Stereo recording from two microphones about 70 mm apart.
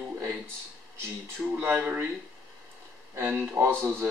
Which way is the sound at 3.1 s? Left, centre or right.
Right.